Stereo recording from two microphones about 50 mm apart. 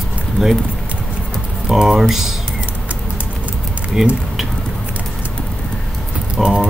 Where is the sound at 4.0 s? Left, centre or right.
Centre.